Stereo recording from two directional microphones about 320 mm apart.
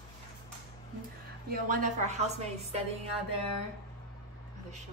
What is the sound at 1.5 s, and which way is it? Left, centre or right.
A woman's voice, right.